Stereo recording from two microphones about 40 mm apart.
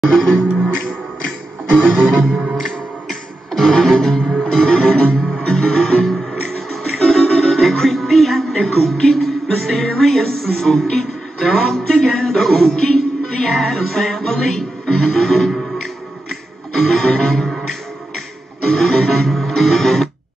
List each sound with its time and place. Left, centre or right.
0.1 s music: centre
2.5 s music: centre
16.7 s music: centre
18.6 s music: centre